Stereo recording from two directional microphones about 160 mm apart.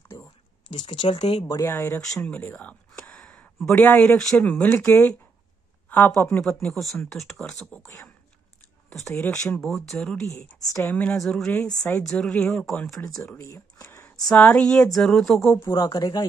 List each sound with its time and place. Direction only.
0.1 s a sound: 30° left (ahead or behind)
0.7 s speech: 35° left (ahead or behind)
1.5 s speech: 15° left (ahead or behind)
7.8 s speech: 20° left (ahead or behind)
9.1 s speech: 15° left (ahead or behind)
10.4 s speech: 15° left (ahead or behind)
13.2 s speech: 15° left (ahead or behind)
14.1 s speech: 5° left (ahead or behind)
15.6 s speech: 20° left (ahead or behind)